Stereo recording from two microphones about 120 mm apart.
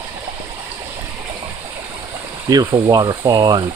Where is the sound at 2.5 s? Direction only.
35° right (ahead or behind).